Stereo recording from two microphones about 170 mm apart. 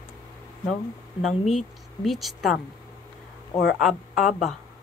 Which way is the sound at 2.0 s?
Centre (ahead or behind).